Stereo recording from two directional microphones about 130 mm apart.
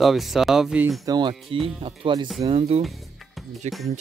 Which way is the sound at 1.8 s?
45° right (ahead or behind).